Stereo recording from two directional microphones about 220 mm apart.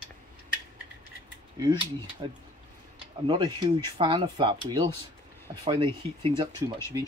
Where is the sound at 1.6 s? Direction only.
20° right (ahead or behind).